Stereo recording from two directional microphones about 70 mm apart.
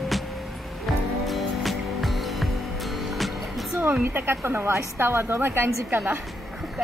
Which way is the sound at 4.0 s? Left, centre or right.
Right.